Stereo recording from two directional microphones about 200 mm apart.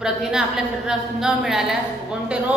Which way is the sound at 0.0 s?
5° right (ahead or behind).